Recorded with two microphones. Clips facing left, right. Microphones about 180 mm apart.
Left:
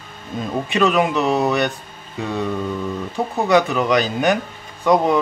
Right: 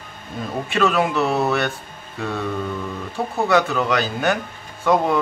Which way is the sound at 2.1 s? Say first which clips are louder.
Left 2 dB; 15° left (ahead or behind).